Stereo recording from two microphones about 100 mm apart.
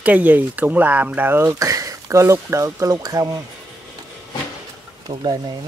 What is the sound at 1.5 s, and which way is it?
Speech, 35° right (ahead or behind).